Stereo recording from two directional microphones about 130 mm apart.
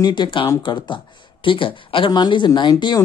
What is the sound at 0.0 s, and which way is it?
Speech, 35° left (ahead or behind).